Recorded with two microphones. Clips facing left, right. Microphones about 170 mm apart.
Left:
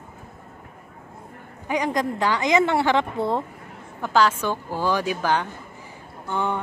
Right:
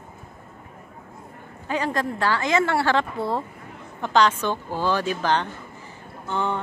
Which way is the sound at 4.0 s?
5° left (ahead or behind).